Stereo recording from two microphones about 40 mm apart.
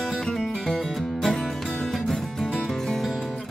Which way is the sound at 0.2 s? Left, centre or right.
Centre.